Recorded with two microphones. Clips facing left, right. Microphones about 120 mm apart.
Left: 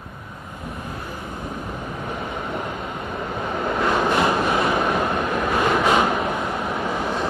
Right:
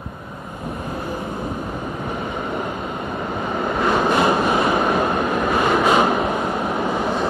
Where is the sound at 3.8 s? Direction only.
15° right (ahead or behind).